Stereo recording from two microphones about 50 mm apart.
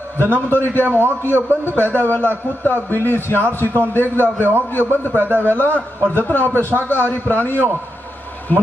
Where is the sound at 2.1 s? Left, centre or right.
Left.